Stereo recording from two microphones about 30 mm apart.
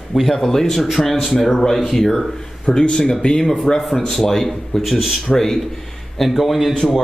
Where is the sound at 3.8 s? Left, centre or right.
Centre.